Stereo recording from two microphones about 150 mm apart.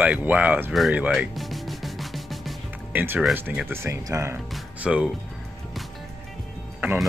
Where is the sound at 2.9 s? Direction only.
10° right (ahead or behind).